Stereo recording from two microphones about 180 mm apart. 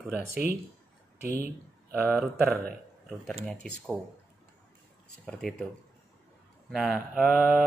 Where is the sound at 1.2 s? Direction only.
55° right (ahead or behind).